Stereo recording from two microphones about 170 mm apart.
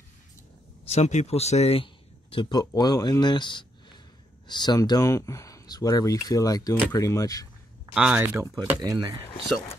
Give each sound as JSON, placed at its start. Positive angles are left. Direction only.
{"t": 0.8, "sound": "speech", "side_deg": 40}
{"t": 2.3, "sound": "speech", "side_deg": 25}
{"t": 7.9, "sound": "speech", "side_deg": -5}